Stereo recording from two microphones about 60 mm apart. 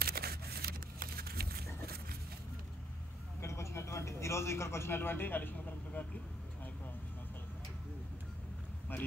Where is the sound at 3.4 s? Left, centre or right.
Left.